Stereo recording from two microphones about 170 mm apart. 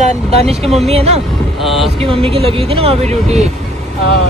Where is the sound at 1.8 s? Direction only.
35° right (ahead or behind).